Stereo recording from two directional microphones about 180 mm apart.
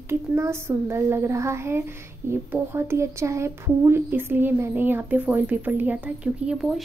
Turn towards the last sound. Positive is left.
turn(degrees=-5)  # may be behind; listen again after turning